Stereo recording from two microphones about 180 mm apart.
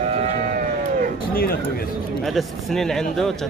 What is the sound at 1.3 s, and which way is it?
Speech, 55° left (ahead or behind).